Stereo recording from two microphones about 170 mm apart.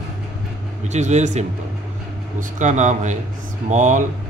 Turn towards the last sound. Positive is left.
turn(degrees=-45)  # may be behind; listen again after turning